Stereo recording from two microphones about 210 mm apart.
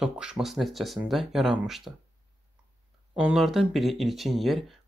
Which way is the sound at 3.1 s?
5° right (ahead or behind).